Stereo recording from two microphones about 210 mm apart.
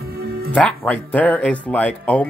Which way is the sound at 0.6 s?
5° left (ahead or behind).